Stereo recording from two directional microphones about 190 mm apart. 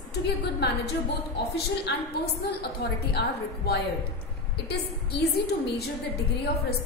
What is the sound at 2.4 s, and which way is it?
A woman's voice, 60° left (ahead or behind).